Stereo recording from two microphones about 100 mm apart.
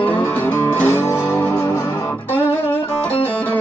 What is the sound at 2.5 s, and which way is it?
Music, 20° left (ahead or behind).